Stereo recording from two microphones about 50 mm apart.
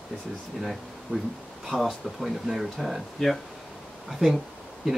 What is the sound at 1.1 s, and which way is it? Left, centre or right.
Speech, right.